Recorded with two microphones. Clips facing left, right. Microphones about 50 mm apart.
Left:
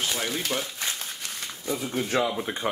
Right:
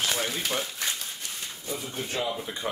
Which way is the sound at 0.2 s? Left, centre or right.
Centre.